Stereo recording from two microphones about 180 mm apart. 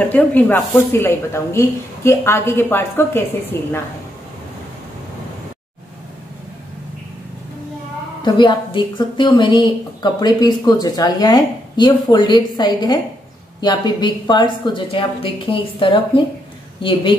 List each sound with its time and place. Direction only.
0.0 s speech: 10° left (ahead or behind)
8.2 s a woman's voice: 25° left (ahead or behind)